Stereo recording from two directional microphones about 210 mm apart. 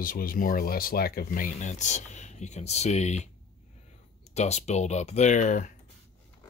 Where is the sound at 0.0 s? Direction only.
40° left (ahead or behind).